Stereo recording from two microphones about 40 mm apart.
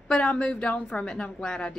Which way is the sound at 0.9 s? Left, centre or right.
Left.